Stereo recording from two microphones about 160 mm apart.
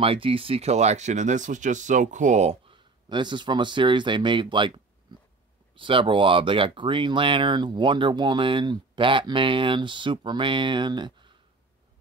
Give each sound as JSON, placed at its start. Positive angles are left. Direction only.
{"t": 0.0, "sound": "speech", "side_deg": -35}
{"t": 2.7, "sound": "speech", "side_deg": -30}